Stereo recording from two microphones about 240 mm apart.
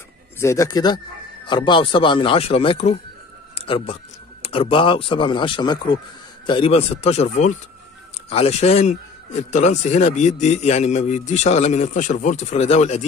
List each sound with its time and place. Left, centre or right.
0.4 s a man's voice: centre; by 13.0 s left